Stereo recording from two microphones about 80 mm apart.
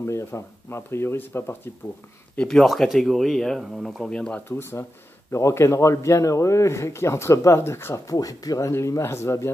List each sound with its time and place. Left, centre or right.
0.0 s a man's voice: left
2.3 s speech: centre
4.1 s speech: centre
4.5 s a man's voice: left
8.1 s a man's voice: left